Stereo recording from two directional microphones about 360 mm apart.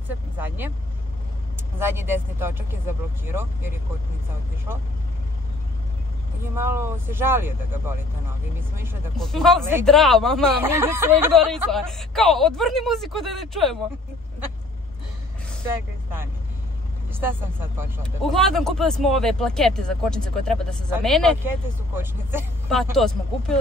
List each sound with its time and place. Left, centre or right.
1.8 s speech: centre
6.4 s speech: centre
17.1 s speech: centre